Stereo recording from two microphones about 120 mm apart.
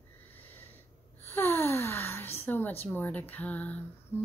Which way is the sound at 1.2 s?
20° left (ahead or behind).